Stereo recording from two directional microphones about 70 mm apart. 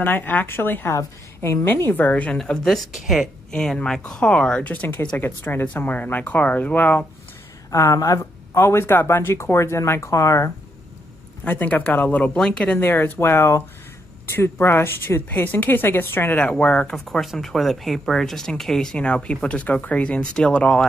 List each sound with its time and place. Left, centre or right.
0.0 s speech: left
0.9 s speech: left
1.9 s speech: left
2.3 s speech: centre
3.5 s speech: centre
7.9 s speech: left
8.2 s speech: left
11.4 s speech: left
12.4 s speech: centre
12.8 s speech: left
16.3 s speech: centre
16.9 s speech: centre